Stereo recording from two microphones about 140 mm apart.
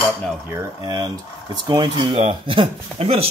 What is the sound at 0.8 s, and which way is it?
Speech, 30° right (ahead or behind).